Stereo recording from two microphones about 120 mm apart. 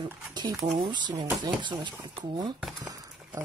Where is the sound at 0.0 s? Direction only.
35° right (ahead or behind).